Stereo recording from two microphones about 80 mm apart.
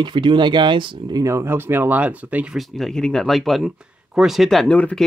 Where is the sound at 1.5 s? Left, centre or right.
Right.